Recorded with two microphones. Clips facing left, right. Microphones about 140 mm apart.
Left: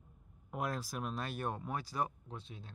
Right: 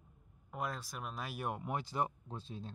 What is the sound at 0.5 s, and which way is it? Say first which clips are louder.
Speech: left 3 dB; 5° left (ahead or behind).